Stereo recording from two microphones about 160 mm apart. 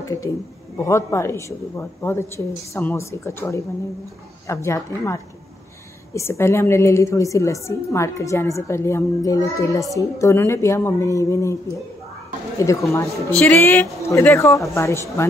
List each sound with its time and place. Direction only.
0.0 s a woman's voice: 20° left (ahead or behind)
12.5 s a woman's voice: 20° left (ahead or behind)